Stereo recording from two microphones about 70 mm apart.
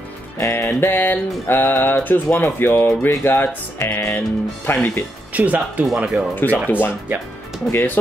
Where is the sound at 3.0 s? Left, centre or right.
Left.